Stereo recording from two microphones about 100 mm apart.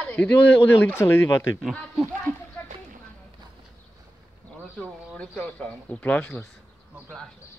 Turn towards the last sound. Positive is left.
turn(degrees=15)  # may be behind; listen again after turning